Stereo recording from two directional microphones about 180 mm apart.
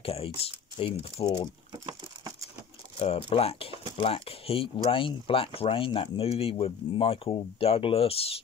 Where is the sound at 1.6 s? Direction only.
25° right (ahead or behind).